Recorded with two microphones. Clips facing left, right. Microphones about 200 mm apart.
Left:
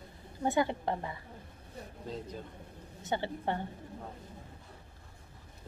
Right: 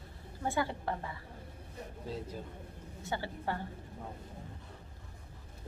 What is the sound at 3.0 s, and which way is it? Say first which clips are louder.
Speech: left 4 dB; 20° left (ahead or behind).